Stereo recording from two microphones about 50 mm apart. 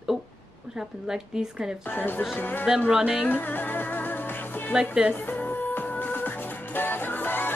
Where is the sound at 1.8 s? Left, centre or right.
Left.